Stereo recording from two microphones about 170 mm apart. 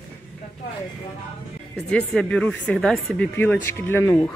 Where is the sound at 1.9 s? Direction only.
5° left (ahead or behind).